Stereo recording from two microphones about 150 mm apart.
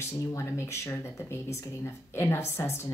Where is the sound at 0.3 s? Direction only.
20° left (ahead or behind).